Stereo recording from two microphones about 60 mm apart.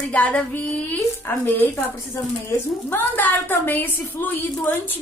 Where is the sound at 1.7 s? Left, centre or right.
Left.